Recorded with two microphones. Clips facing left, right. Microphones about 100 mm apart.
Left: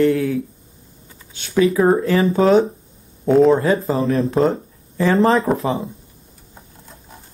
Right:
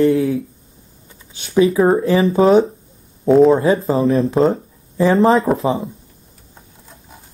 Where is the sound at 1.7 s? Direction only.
5° right (ahead or behind).